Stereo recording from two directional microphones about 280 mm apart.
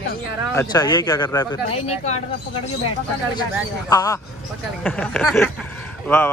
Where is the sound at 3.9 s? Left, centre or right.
Centre.